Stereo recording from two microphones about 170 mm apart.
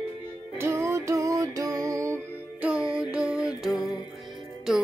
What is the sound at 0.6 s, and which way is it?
Music, 15° right (ahead or behind).